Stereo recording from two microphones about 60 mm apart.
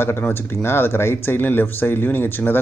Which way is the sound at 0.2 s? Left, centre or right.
Left.